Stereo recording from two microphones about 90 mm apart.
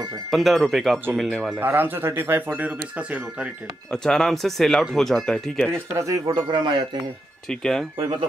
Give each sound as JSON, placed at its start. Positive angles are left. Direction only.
{"t": 0.3, "sound": "speech", "side_deg": 0}
{"t": 1.6, "sound": "speech", "side_deg": -25}
{"t": 3.9, "sound": "speech", "side_deg": 5}
{"t": 5.7, "sound": "speech", "side_deg": -35}
{"t": 6.2, "sound": "speech", "side_deg": -50}
{"t": 7.4, "sound": "speech", "side_deg": 5}
{"t": 8.0, "sound": "speech", "side_deg": -55}